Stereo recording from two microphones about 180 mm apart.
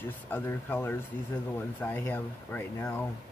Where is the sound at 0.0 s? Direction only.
10° left (ahead or behind).